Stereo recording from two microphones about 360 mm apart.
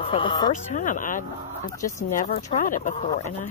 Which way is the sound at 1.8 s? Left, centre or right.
Centre.